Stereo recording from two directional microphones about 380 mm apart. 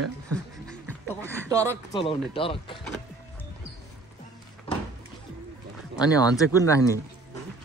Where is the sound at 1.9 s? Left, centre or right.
Centre.